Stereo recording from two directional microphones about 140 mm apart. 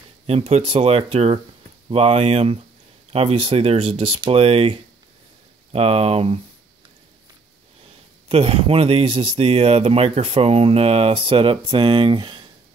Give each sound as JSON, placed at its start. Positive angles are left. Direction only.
{"t": 0.3, "sound": "speech", "side_deg": -45}
{"t": 8.3, "sound": "speech", "side_deg": -45}